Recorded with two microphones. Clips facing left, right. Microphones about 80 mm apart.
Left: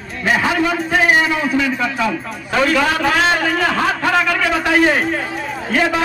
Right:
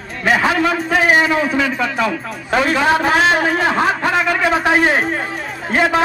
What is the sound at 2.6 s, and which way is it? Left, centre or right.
A man's voice, right.